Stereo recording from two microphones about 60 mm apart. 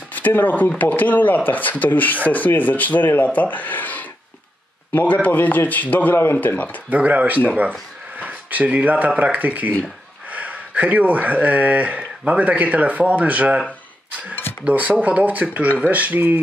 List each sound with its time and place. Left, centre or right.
0.1 s speech: left
6.9 s speech: right
14.7 s speech: right